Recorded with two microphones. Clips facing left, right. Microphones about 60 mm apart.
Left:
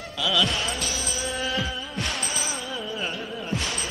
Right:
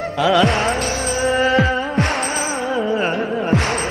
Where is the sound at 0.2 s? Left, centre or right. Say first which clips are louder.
Right 10 dB; right.